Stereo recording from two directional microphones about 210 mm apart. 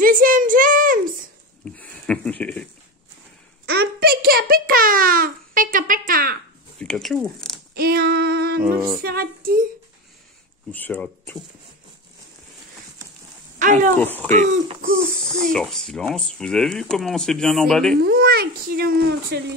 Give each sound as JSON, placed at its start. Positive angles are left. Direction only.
{"t": 0.0, "sound": "a sound", "side_deg": -40}
{"t": 1.6, "sound": "speech", "side_deg": 5}
{"t": 3.6, "sound": "a sound", "side_deg": -50}
{"t": 6.8, "sound": "speech", "side_deg": 5}
{"t": 7.7, "sound": "female singing", "side_deg": -45}
{"t": 9.0, "sound": "speech", "side_deg": -45}
{"t": 10.7, "sound": "speech", "side_deg": 10}
{"t": 13.6, "sound": "speech", "side_deg": -35}
{"t": 13.9, "sound": "speech", "side_deg": 10}
{"t": 14.3, "sound": "speech", "side_deg": -35}
{"t": 15.4, "sound": "speech", "side_deg": 0}
{"t": 18.0, "sound": "speech", "side_deg": -45}